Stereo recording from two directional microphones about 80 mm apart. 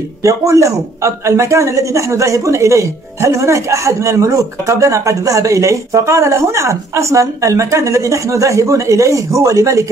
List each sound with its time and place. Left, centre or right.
0.2 s a man's voice: right